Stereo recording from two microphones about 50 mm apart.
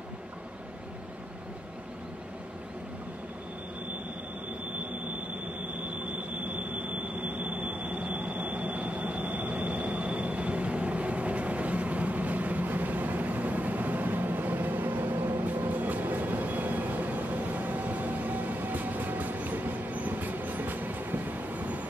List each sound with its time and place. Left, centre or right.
7.4 s a sound: right
8.1 s vehicle: right
9.3 s train: right
15.4 s vehicle: right